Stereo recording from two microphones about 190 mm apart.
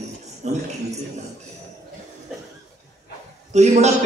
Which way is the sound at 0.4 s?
35° right (ahead or behind).